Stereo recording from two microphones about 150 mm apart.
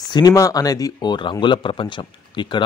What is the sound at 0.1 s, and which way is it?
Speech, 25° left (ahead or behind).